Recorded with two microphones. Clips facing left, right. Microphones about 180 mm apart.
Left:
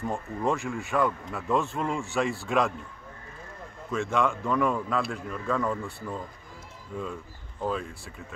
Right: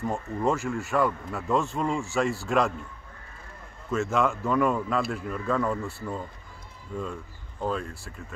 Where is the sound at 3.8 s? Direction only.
5° right (ahead or behind).